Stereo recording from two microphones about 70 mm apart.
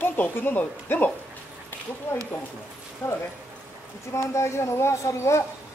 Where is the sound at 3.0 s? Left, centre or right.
Left.